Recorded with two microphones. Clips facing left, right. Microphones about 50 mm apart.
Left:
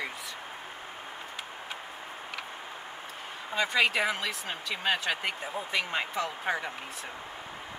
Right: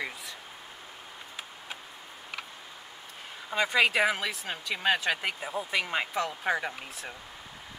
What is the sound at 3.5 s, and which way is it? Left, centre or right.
Speech, centre.